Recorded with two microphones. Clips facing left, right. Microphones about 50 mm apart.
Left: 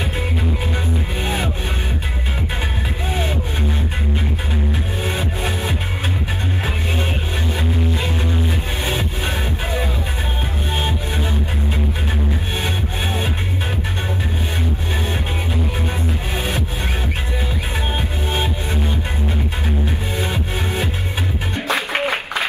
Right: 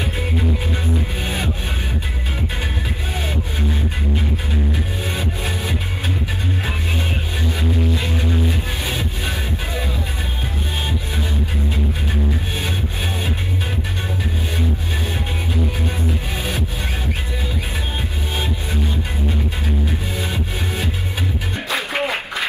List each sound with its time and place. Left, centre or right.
5.0 s music: left
8.8 s music: left
18.3 s music: left
21.6 s music: left